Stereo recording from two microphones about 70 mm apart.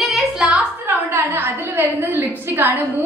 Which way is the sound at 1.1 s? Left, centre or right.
Right.